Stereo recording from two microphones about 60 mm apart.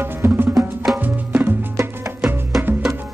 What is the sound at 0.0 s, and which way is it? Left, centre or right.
Music, right.